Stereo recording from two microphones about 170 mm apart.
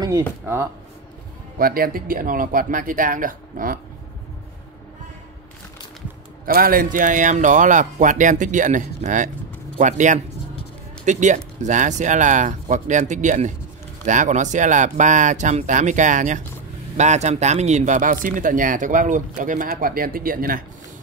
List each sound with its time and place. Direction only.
1.6 s speech: 60° right (ahead or behind)
6.4 s speech: 55° right (ahead or behind)